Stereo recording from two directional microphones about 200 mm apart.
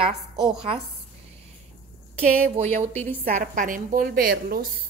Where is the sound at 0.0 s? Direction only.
25° right (ahead or behind).